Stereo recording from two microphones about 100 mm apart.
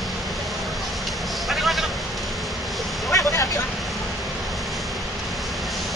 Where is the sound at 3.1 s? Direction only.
30° left (ahead or behind).